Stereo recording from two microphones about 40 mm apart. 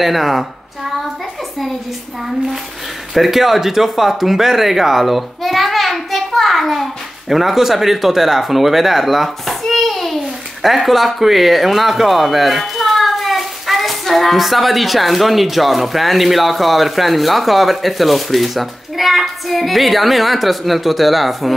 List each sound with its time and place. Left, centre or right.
0.0 s a woman's voice: centre
3.2 s speech: centre
9.6 s a sound: centre
10.6 s speech: centre